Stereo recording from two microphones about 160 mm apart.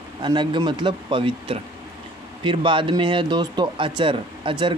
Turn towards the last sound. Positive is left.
turn(degrees=-30)  # may be behind; listen again after turning